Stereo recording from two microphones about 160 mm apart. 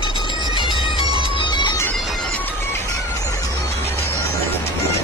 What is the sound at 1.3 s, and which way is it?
Bagpipes, 30° left (ahead or behind).